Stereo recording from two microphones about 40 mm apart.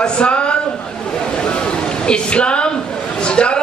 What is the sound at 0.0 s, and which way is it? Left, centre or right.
Speech, left.